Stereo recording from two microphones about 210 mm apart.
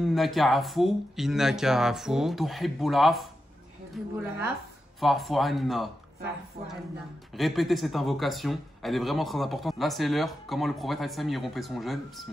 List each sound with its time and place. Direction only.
0.0 s speech: centre (ahead or behind)
6.6 s speech: 45° right (ahead or behind)
7.3 s speech: centre (ahead or behind)